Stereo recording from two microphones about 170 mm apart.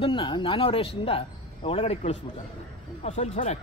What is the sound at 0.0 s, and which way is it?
Speech, 30° left (ahead or behind).